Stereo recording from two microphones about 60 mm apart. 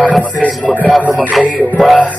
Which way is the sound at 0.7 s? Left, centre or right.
Centre.